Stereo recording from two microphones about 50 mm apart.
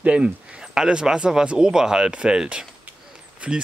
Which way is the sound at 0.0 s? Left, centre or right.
Right.